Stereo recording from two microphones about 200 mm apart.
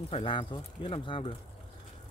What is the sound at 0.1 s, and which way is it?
Speech, 25° left (ahead or behind).